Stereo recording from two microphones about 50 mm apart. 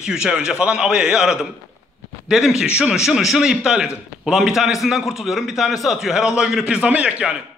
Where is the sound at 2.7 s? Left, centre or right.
Right.